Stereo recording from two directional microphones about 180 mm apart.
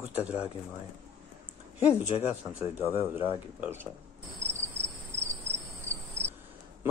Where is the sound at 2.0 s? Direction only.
35° left (ahead or behind).